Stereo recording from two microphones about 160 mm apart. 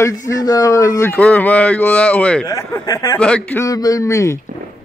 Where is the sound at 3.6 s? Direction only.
20° left (ahead or behind).